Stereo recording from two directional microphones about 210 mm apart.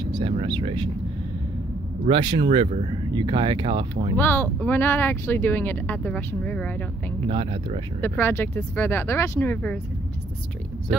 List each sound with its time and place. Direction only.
0.1 s speech: 25° right (ahead or behind)
2.0 s speech: 25° right (ahead or behind)
4.2 s speech: 10° left (ahead or behind)
7.2 s speech: 25° right (ahead or behind)
8.0 s speech: 10° left (ahead or behind)